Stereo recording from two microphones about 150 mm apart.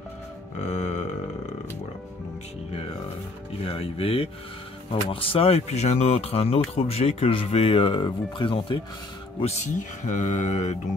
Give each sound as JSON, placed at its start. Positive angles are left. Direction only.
{"t": 0.6, "sound": "a sound", "side_deg": 50}
{"t": 3.6, "sound": "speech", "side_deg": 40}
{"t": 9.4, "sound": "speech", "side_deg": 50}